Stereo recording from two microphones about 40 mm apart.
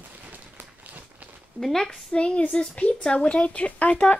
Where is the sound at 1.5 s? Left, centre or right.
Centre.